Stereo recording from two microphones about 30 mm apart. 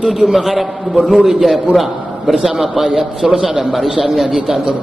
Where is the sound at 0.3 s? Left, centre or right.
Centre.